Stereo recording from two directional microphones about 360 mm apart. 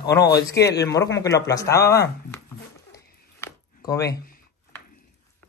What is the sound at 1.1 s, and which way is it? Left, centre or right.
Speech, centre.